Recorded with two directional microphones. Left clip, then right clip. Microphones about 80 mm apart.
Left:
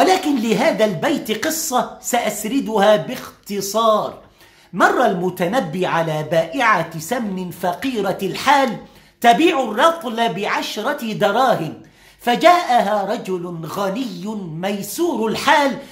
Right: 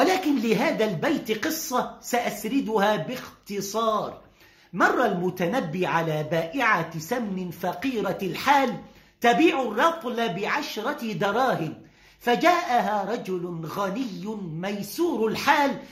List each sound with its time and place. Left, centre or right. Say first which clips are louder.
0.0 s speech: left 7 dB; left